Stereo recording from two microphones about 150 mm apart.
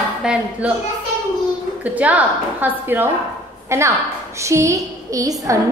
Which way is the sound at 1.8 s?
10° right (ahead or behind).